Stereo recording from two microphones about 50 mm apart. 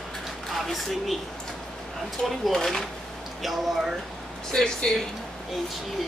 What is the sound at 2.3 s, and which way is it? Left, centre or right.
Speech, centre.